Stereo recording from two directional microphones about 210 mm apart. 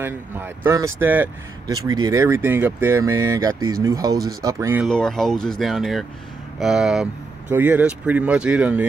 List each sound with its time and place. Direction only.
0.0 s speech: 10° right (ahead or behind)
4.8 s speech: 5° left (ahead or behind)